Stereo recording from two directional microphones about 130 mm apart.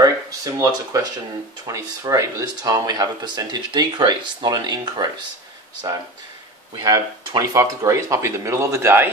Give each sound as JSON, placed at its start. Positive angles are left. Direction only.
{"t": 0.0, "sound": "speech", "side_deg": -25}
{"t": 6.8, "sound": "speech", "side_deg": -30}